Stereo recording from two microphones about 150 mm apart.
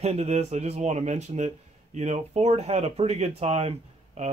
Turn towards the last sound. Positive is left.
turn(degrees=-45)  # may be behind; listen again after turning